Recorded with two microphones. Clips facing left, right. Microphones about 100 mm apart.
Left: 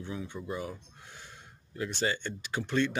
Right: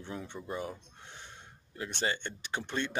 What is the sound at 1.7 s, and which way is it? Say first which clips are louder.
Speech: left 2 dB; 25° right (ahead or behind).